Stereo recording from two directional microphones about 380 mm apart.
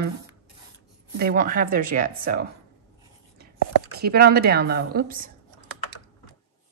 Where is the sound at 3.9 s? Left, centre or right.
Right.